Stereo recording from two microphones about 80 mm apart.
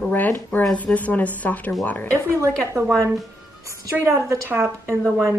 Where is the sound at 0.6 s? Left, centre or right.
Centre.